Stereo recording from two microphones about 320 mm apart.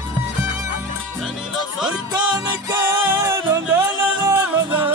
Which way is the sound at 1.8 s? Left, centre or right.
Centre.